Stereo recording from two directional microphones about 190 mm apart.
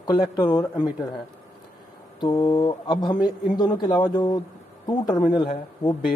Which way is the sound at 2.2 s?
20° left (ahead or behind).